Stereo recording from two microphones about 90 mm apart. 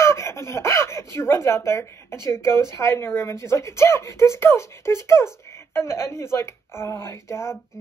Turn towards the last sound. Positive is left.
turn(degrees=30)  # may be behind; listen again after turning